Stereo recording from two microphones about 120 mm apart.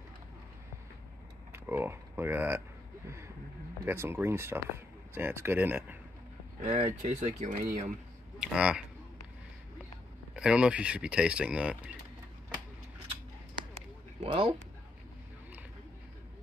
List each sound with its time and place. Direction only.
1.5 s speech: 20° right (ahead or behind)
3.8 s speech: 20° right (ahead or behind)
6.6 s speech: 65° right (ahead or behind)
8.4 s speech: 10° right (ahead or behind)
10.3 s speech: 10° right (ahead or behind)
14.2 s speech: 45° right (ahead or behind)